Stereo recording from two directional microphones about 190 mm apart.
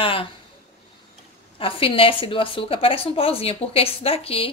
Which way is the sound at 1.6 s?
30° left (ahead or behind).